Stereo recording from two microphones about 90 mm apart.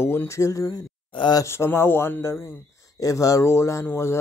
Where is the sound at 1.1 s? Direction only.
55° left (ahead or behind).